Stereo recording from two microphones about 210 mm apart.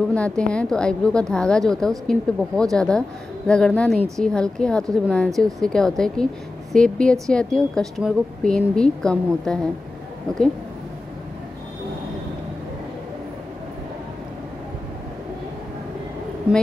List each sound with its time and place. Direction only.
0.1 s speech: 5° left (ahead or behind)